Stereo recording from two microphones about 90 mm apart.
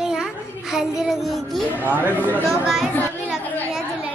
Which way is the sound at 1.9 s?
20° right (ahead or behind).